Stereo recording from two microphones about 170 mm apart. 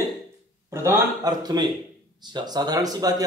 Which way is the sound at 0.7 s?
15° right (ahead or behind).